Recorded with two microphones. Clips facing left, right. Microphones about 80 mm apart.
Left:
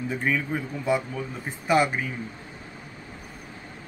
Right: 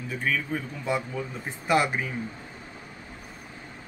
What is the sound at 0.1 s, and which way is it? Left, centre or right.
Speech, centre.